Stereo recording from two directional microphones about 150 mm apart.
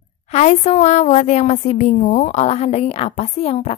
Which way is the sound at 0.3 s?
45° left (ahead or behind).